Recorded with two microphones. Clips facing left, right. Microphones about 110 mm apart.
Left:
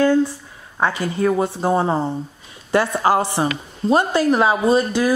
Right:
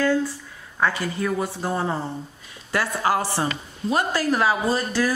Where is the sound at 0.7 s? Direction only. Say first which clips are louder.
Left 3 dB; 30° left (ahead or behind).